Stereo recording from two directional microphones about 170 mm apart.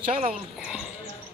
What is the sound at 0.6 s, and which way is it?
Speech, 5° right (ahead or behind).